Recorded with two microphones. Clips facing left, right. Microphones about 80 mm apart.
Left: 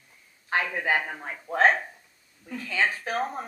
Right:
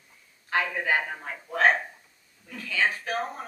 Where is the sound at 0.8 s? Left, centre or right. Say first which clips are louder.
Even; left.